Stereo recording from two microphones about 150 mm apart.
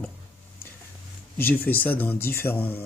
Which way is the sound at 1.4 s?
10° left (ahead or behind).